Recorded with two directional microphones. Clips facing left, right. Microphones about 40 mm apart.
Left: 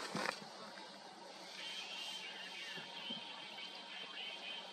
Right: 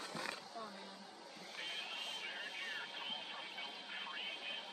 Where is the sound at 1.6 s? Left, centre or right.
Right.